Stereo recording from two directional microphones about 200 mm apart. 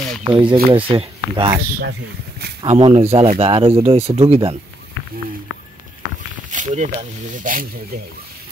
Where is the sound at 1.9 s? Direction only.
50° right (ahead or behind).